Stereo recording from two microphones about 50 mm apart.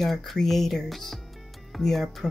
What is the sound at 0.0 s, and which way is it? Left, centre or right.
Speech, centre.